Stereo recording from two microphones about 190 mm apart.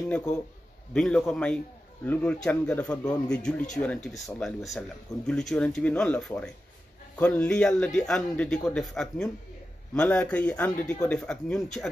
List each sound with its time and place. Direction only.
0.1 s speech: 10° left (ahead or behind)